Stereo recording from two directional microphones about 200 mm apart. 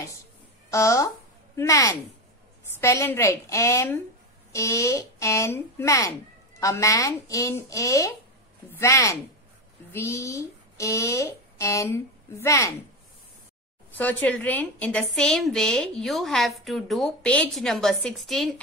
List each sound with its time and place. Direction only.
0.7 s speech: 15° left (ahead or behind)
13.9 s a woman's voice: 10° left (ahead or behind)